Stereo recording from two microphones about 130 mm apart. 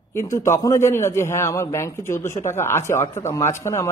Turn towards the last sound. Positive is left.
turn(degrees=20)  # may be behind; listen again after turning